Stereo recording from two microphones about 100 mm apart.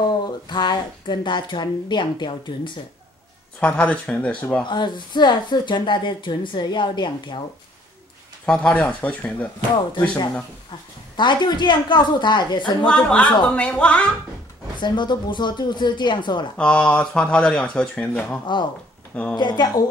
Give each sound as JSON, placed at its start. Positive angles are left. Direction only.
{"t": 0.5, "sound": "speech", "side_deg": 50}
{"t": 3.5, "sound": "speech", "side_deg": 15}
{"t": 4.6, "sound": "speech", "side_deg": 50}
{"t": 8.5, "sound": "speech", "side_deg": 15}
{"t": 9.9, "sound": "speech", "side_deg": 50}
{"t": 12.8, "sound": "speech", "side_deg": 10}
{"t": 14.8, "sound": "speech", "side_deg": 50}
{"t": 16.5, "sound": "speech", "side_deg": 10}
{"t": 19.3, "sound": "speech", "side_deg": 45}